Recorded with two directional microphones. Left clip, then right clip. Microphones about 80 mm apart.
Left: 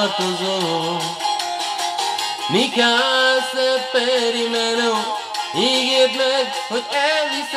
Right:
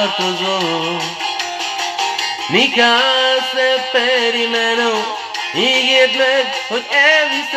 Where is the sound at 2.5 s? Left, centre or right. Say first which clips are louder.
Right 5 dB; left.